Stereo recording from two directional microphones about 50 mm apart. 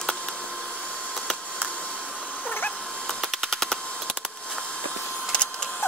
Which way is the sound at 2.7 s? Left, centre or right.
Centre.